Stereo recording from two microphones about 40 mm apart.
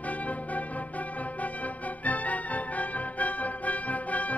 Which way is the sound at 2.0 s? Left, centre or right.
Left.